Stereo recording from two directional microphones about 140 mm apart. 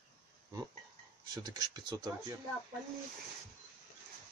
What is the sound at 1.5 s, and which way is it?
Speech, 30° right (ahead or behind).